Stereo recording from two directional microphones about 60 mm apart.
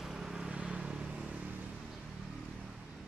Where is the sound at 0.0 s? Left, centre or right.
Centre.